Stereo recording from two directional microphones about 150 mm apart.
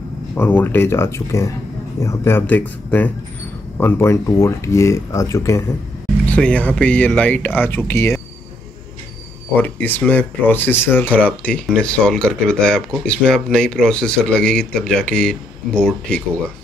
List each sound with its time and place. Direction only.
0.3 s speech: 15° left (ahead or behind)
6.2 s speech: 10° left (ahead or behind)
9.6 s speech: 10° left (ahead or behind)